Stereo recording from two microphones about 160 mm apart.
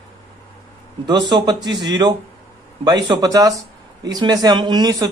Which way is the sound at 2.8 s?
25° right (ahead or behind).